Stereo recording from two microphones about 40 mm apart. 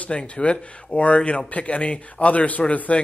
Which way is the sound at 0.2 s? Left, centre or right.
Left.